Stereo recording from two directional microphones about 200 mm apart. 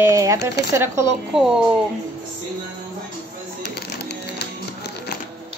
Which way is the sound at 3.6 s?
55° left (ahead or behind).